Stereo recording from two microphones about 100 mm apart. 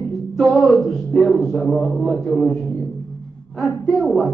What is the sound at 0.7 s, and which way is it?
A man's voice, centre (ahead or behind).